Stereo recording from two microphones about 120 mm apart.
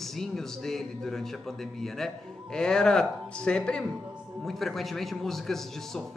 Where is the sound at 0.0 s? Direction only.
5° left (ahead or behind).